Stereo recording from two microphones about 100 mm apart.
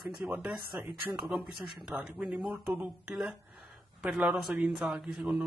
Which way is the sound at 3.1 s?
5° right (ahead or behind).